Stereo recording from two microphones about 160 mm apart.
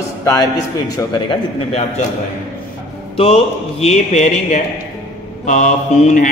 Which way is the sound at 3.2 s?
40° left (ahead or behind).